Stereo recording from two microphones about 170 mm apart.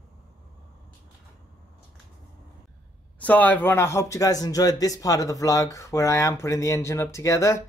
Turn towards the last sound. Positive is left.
turn(degrees=20)  # may be behind; listen again after turning